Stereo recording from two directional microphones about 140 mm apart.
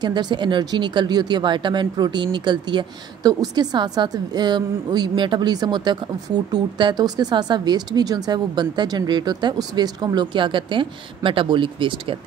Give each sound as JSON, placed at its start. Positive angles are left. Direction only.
{"t": 0.0, "sound": "speech", "side_deg": -30}